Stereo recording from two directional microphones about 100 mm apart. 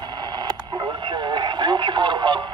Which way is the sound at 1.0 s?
50° right (ahead or behind).